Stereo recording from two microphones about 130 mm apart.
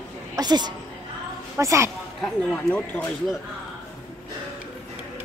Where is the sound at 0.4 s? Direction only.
35° right (ahead or behind).